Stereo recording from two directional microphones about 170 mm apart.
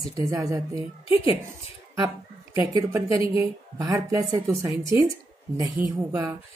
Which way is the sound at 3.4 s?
20° right (ahead or behind).